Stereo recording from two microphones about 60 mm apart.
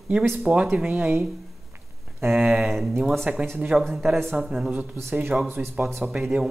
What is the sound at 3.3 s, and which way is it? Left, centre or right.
Speech, centre.